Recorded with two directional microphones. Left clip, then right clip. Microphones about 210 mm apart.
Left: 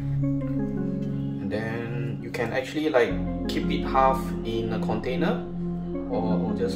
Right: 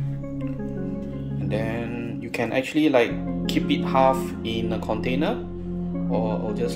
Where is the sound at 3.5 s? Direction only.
40° right (ahead or behind).